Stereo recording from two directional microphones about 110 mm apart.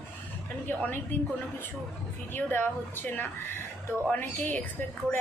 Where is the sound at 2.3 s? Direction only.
15° left (ahead or behind).